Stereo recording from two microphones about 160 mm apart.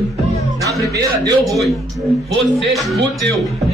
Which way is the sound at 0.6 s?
25° right (ahead or behind).